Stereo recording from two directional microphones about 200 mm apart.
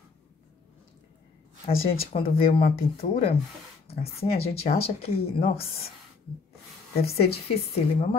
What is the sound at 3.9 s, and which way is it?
Speech, 30° left (ahead or behind).